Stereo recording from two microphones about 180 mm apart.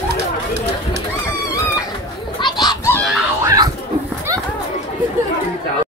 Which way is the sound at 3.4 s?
20° right (ahead or behind).